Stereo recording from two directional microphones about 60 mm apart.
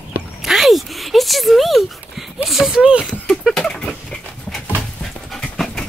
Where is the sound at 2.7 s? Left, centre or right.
Centre.